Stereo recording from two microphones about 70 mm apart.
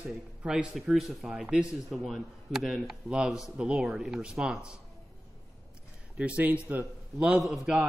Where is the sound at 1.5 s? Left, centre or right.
Centre.